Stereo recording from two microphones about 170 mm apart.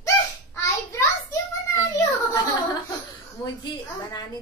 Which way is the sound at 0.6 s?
15° left (ahead or behind).